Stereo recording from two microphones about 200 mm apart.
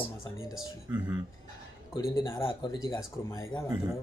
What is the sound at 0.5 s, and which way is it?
Speech, 5° right (ahead or behind).